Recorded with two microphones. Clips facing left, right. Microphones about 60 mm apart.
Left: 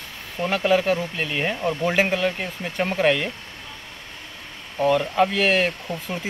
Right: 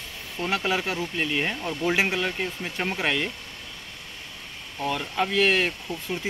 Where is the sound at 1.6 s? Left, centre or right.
Left.